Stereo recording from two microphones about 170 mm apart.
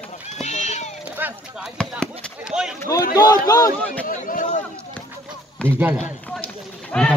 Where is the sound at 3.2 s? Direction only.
20° left (ahead or behind).